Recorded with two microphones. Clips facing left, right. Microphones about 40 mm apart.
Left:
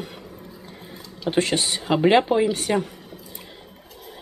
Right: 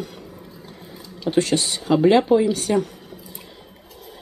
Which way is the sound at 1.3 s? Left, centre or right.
Left.